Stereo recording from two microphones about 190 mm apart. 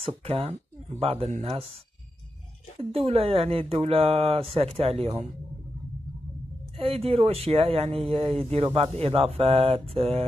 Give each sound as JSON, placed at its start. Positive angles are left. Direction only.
{"t": 0.0, "sound": "speech", "side_deg": -30}
{"t": 3.1, "sound": "speech", "side_deg": -30}
{"t": 6.8, "sound": "speech", "side_deg": -30}